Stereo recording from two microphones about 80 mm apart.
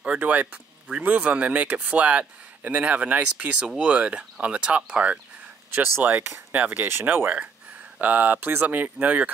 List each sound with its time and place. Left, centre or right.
0.0 s speech: centre